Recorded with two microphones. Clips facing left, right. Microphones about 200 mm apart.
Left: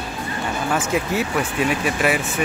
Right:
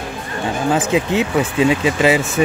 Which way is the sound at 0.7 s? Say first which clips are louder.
Right 4 dB; 20° right (ahead or behind).